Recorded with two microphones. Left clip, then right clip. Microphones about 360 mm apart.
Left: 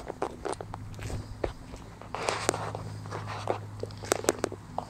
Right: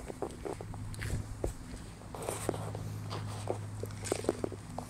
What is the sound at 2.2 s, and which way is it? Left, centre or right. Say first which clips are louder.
Walk: left 8 dB; left.